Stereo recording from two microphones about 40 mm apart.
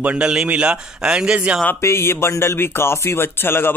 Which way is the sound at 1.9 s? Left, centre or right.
Left.